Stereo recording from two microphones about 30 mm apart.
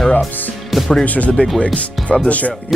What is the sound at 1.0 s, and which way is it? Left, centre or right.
Speech, left.